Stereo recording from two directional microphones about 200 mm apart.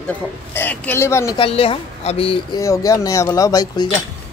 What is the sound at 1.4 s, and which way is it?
Speech, 25° left (ahead or behind).